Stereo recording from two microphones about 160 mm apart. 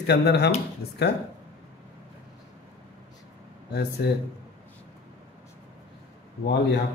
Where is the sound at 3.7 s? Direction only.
90° left.